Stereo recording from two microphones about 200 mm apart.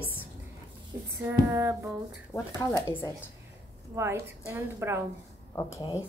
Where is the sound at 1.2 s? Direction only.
10° right (ahead or behind).